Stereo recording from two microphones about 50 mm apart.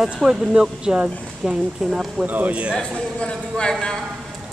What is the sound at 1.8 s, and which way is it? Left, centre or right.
Speech, centre.